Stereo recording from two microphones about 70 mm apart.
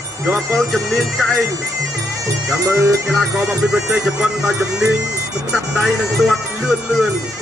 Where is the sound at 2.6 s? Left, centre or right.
Right.